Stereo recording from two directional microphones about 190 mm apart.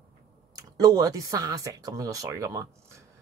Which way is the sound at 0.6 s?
20° right (ahead or behind).